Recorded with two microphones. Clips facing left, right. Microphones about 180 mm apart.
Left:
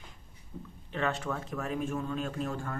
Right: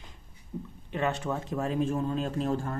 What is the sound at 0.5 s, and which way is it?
A man's voice, 10° right (ahead or behind).